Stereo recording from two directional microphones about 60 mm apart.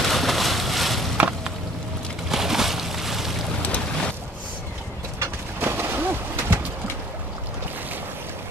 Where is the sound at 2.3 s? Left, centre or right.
Centre.